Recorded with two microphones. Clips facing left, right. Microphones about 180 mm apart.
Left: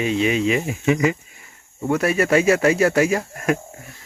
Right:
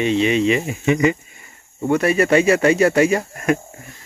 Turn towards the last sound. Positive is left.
turn(degrees=0)  # may be behind; listen again after turning